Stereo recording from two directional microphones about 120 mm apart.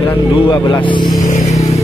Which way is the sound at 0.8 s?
40° left (ahead or behind).